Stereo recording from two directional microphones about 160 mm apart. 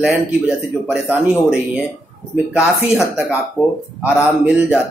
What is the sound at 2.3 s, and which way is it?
Speech, 5° right (ahead or behind).